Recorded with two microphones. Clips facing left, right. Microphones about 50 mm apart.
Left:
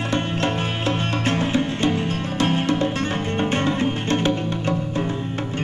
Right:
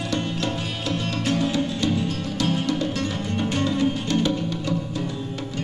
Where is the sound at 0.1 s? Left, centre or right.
Left.